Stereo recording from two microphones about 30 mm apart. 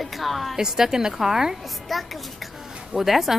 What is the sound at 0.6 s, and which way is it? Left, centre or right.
Speech, centre.